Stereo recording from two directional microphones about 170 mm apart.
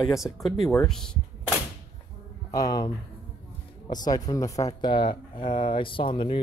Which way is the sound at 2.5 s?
20° left (ahead or behind).